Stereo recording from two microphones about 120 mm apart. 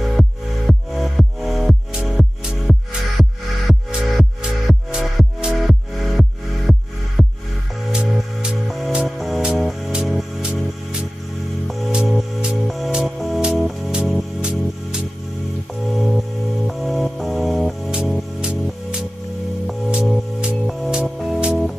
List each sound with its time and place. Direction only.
0.0 s music: centre (ahead or behind)
4.2 s music: 5° right (ahead or behind)